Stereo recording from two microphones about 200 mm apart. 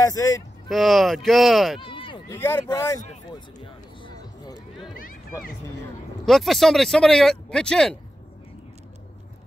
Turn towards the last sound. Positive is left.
turn(degrees=5)  # may be behind; listen again after turning